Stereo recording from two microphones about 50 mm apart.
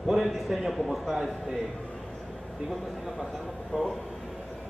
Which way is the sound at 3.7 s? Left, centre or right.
Centre.